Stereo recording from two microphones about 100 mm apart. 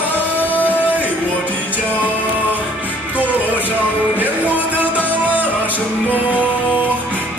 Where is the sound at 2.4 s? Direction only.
15° right (ahead or behind).